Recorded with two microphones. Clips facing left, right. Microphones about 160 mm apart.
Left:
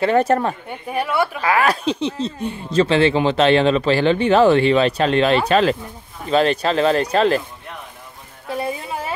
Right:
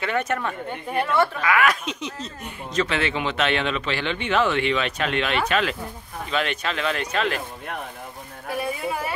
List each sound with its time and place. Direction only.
0.0 s speech: 35° left (ahead or behind)
0.7 s a woman's voice: 10° left (ahead or behind)
1.4 s speech: 35° left (ahead or behind)
8.5 s a sound: 25° left (ahead or behind)